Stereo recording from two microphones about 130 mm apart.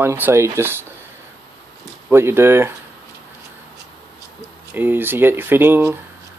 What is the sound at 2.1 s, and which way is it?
Speech, 20° right (ahead or behind).